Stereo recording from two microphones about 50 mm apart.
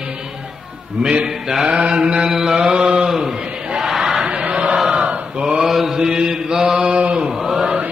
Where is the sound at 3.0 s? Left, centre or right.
Centre.